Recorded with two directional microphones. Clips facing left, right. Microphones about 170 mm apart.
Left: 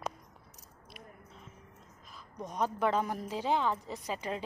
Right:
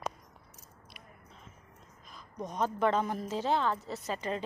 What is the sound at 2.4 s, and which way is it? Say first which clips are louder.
A woman's voice: right 2 dB; 10° left (ahead or behind).